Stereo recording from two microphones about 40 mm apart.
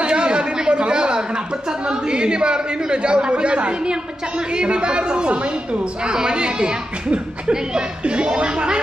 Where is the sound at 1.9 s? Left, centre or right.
Right.